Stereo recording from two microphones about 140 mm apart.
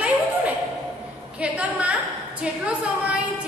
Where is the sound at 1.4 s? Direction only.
10° right (ahead or behind).